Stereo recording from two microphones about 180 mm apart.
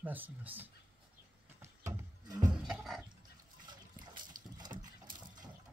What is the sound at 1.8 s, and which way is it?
Music, 20° right (ahead or behind).